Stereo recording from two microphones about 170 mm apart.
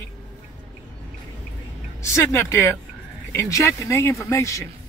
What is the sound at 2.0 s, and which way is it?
Speech, 15° left (ahead or behind).